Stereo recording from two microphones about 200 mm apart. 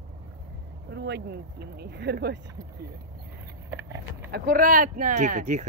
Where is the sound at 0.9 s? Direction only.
60° right (ahead or behind).